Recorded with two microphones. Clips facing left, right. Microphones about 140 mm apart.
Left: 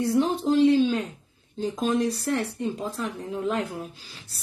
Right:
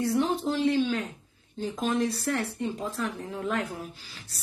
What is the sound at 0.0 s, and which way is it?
Speech, 15° left (ahead or behind).